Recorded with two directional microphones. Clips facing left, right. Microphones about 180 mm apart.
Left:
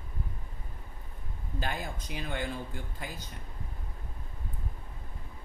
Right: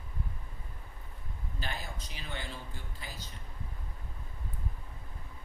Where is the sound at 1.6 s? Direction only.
50° left (ahead or behind).